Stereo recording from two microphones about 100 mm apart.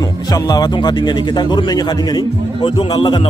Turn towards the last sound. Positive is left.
turn(degrees=55)  # may be behind; listen again after turning